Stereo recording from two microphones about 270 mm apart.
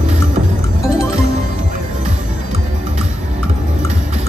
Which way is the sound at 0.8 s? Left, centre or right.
Centre.